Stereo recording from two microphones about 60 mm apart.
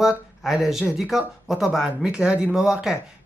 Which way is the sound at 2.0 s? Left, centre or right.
Centre.